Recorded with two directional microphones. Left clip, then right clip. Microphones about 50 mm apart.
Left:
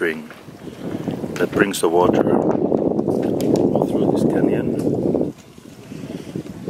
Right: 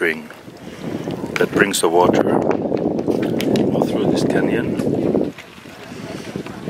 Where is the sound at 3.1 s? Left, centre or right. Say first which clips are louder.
Even; right.